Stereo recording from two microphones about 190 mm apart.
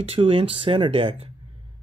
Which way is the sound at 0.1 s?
30° right (ahead or behind).